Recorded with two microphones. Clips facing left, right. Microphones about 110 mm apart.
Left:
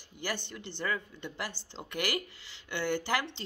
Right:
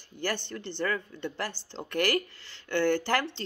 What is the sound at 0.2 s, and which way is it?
Speech, 15° left (ahead or behind).